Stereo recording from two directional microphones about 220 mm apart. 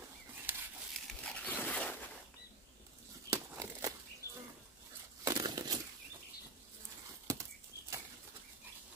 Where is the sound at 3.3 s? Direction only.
15° right (ahead or behind).